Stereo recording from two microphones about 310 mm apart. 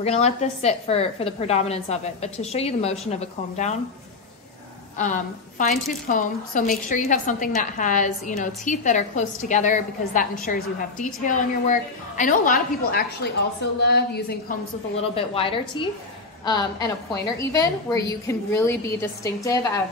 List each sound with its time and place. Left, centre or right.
0.0 s a woman's voice: left
4.9 s a woman's voice: left
15.0 s a woman's voice: centre